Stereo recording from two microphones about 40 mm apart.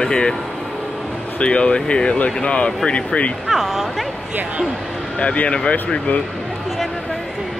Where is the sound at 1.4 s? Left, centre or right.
Left.